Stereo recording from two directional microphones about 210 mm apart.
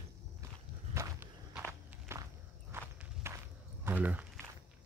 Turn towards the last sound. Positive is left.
turn(degrees=-10)  # may be behind; listen again after turning